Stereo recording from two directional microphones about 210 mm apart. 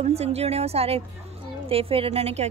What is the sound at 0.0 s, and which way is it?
A woman's voice, 30° right (ahead or behind).